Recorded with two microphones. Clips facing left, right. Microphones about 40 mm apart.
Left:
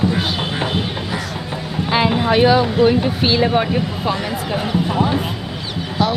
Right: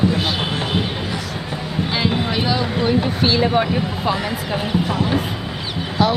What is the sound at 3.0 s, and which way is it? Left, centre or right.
Speech, centre.